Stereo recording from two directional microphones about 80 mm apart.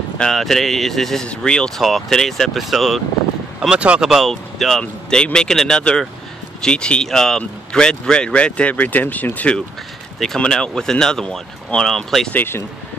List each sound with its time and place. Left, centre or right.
0.2 s speech: centre
3.6 s speech: centre
4.1 s speech: centre
10.1 s speech: centre
12.3 s speech: left